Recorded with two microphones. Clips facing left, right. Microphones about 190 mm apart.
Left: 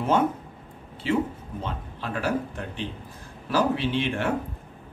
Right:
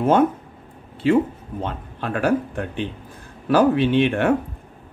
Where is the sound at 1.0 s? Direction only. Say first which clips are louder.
Right 7 dB; 55° right (ahead or behind).